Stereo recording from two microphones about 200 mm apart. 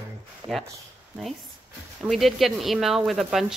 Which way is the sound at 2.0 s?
Centre (ahead or behind).